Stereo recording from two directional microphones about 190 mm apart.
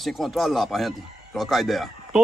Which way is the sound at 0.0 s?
Centre (ahead or behind).